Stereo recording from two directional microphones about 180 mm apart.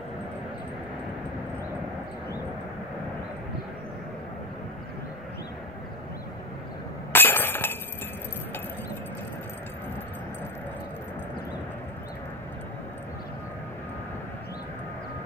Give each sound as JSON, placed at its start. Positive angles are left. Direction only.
{"t": 7.1, "sound": "chink", "side_deg": 10}